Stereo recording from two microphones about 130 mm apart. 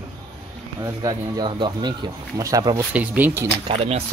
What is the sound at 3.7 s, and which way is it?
Speech, 50° right (ahead or behind).